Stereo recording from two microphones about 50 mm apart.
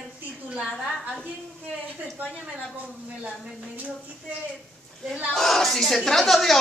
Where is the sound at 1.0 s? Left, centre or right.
Right.